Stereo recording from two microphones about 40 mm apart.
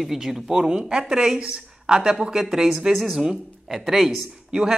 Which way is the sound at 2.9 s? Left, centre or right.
Centre.